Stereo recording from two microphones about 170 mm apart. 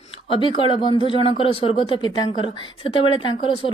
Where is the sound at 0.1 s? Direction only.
30° left (ahead or behind).